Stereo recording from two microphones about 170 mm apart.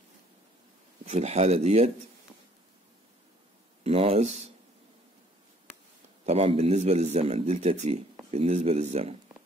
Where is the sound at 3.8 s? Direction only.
35° right (ahead or behind).